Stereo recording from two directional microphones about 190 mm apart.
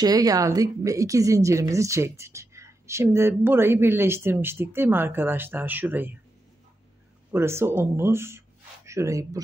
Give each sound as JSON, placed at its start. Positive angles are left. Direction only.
{"t": 0.0, "sound": "speech", "side_deg": -20}
{"t": 7.3, "sound": "speech", "side_deg": -15}